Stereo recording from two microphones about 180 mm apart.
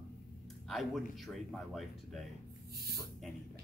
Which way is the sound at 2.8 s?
60° right (ahead or behind).